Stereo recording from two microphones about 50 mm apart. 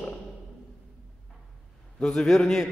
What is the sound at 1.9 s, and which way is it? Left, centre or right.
Speech, centre.